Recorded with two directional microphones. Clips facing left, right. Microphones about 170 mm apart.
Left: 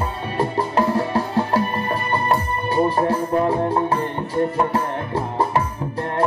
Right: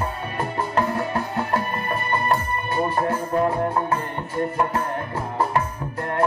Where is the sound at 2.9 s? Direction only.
30° left (ahead or behind).